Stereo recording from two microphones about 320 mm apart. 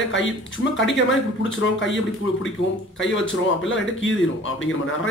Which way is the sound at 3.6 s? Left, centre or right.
Left.